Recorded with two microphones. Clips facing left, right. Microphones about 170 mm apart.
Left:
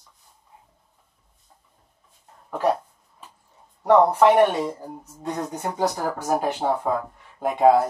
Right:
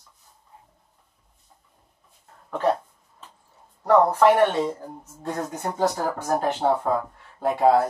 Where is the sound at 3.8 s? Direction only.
10° left (ahead or behind).